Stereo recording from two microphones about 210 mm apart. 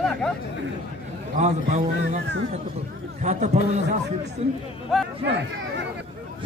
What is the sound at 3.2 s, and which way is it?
A man's voice, 35° right (ahead or behind).